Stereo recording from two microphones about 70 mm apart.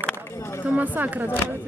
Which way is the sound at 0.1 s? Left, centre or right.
Left.